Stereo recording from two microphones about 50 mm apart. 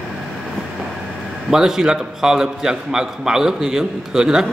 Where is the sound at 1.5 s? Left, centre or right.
Centre.